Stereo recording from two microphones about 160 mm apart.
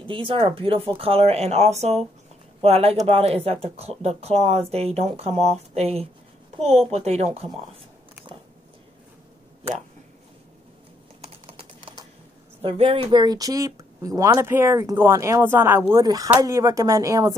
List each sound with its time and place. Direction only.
0.0 s speech: 30° right (ahead or behind)
11.1 s typing: 35° right (ahead or behind)
12.6 s speech: 35° right (ahead or behind)